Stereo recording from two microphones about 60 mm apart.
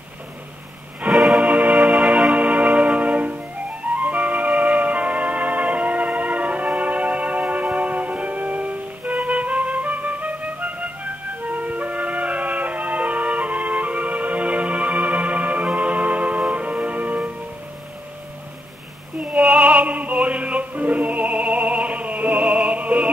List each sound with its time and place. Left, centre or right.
1.1 s music: centre
1.4 s music: right
2.0 s music: centre
19.1 s music: right
22.4 s opera: centre